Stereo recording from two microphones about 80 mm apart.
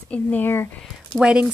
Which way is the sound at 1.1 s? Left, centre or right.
Centre.